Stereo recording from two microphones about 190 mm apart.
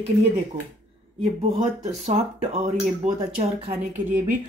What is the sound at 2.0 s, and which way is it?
A woman's voice, 35° right (ahead or behind).